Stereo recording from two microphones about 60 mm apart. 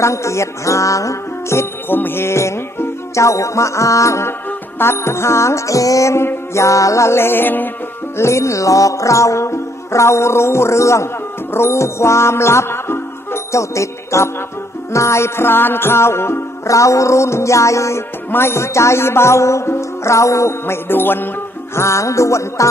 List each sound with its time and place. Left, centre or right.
0.0 s music: left
4.5 s music: left
8.2 s music: left
16.6 s music: left
18.3 s music: left
21.7 s music: left